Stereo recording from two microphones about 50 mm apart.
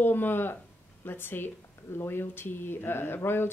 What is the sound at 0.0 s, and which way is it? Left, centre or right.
A woman's voice, left.